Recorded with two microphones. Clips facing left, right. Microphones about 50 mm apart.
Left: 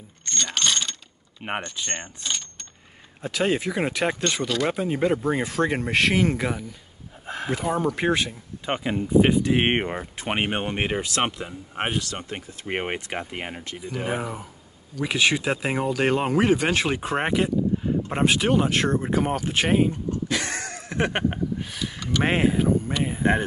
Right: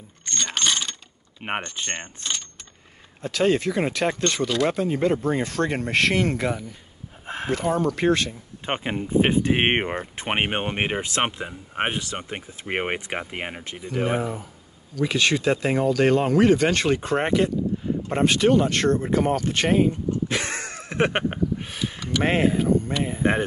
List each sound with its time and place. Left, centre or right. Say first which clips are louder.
0.2 s a sound: even; centre
1.4 s speech: right 1 dB; right
1.9 s keys jangling: right 1 dB; centre
3.2 s speech: right 3 dB; centre
8.6 s speech: left 1 dB; right
14.0 s speech: right 3 dB; centre
20.1 s a sound: right 1 dB; right
22.2 s speech: right 1 dB; centre